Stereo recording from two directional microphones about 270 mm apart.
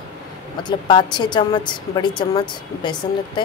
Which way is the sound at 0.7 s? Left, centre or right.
Centre.